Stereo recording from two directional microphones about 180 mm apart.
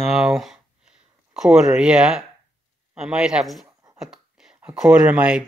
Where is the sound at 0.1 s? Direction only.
Centre (ahead or behind).